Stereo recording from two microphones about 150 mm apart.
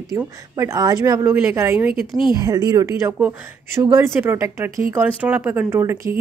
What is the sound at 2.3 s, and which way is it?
A woman's voice, 25° right (ahead or behind).